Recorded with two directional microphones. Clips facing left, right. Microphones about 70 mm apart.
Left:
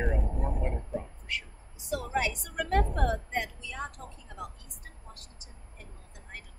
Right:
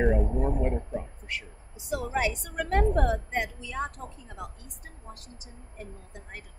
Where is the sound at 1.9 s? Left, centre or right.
Right.